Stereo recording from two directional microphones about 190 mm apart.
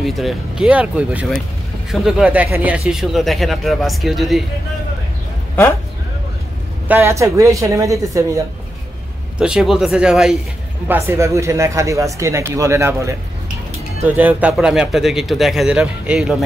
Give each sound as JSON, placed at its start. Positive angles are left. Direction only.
{"t": 0.0, "sound": "speech", "side_deg": 0}
{"t": 6.9, "sound": "speech", "side_deg": -15}
{"t": 9.4, "sound": "speech", "side_deg": -5}